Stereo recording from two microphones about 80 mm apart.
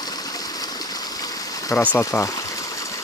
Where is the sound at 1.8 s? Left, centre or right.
Left.